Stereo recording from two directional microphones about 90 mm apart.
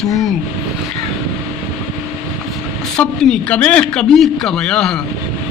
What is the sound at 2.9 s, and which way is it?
Speech, 10° left (ahead or behind).